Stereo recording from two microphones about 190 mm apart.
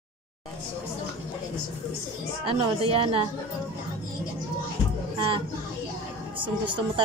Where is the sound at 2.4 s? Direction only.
30° right (ahead or behind).